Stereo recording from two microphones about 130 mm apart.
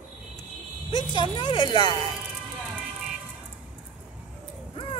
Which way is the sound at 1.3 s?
35° left (ahead or behind).